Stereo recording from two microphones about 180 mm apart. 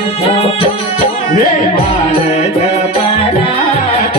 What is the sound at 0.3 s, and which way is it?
Music, 35° left (ahead or behind).